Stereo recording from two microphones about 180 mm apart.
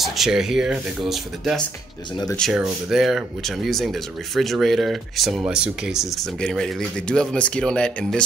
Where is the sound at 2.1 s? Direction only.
25° left (ahead or behind).